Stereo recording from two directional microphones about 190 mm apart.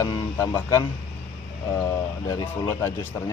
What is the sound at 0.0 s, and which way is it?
A man's voice, 15° left (ahead or behind).